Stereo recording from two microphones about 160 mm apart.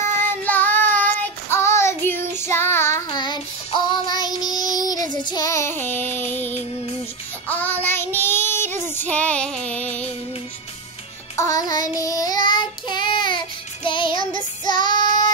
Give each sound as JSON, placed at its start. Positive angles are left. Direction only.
{"t": 0.1, "sound": "child singing", "side_deg": 10}
{"t": 3.1, "sound": "child singing", "side_deg": 30}
{"t": 11.3, "sound": "music", "side_deg": 20}
{"t": 12.0, "sound": "child singing", "side_deg": 20}
{"t": 13.8, "sound": "music", "side_deg": 30}
{"t": 14.6, "sound": "child singing", "side_deg": 30}
{"t": 15.0, "sound": "child singing", "side_deg": -50}